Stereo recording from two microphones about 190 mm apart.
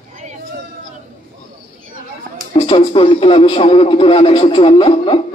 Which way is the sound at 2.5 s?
30° left (ahead or behind).